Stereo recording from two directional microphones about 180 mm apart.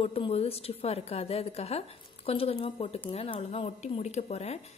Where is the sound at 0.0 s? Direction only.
35° left (ahead or behind).